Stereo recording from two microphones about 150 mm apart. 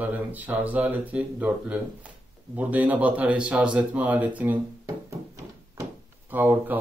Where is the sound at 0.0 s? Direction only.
10° right (ahead or behind).